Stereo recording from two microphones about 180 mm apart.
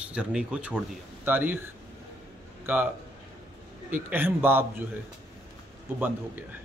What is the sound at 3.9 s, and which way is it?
Speech, 10° right (ahead or behind).